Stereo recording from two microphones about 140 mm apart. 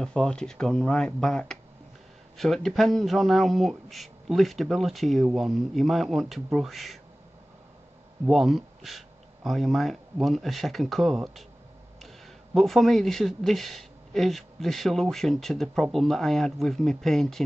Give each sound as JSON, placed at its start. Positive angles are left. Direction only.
{"t": 0.0, "sound": "speech", "side_deg": 5}
{"t": 8.3, "sound": "speech", "side_deg": 0}
{"t": 12.5, "sound": "speech", "side_deg": 0}